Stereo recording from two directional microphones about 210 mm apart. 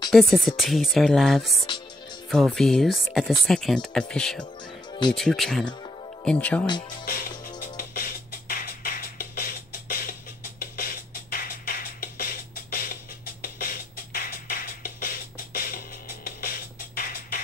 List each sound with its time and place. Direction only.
0.1 s speech: centre (ahead or behind)
7.6 s music: 45° left (ahead or behind)
13.4 s music: 45° left (ahead or behind)